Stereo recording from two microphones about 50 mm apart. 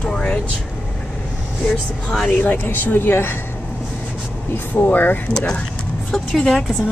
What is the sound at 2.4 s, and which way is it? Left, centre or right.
Speech, left.